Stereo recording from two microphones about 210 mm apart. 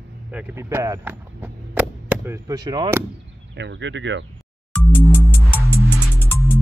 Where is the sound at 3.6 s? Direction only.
60° right (ahead or behind).